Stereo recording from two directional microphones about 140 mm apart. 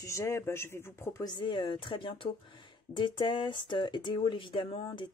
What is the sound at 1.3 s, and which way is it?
Speech, 35° left (ahead or behind).